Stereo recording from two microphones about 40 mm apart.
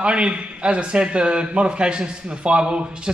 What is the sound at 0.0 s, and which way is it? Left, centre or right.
Speech, right.